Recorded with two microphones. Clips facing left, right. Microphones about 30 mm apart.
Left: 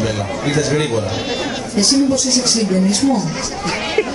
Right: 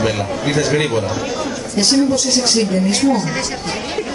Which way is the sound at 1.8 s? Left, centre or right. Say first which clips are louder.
Even; right.